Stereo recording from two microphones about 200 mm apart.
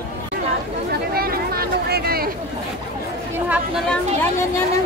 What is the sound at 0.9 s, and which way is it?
Chatter, 50° right (ahead or behind).